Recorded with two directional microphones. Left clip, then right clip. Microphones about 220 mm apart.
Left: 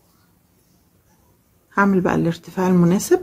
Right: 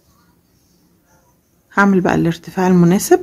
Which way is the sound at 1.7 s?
15° right (ahead or behind).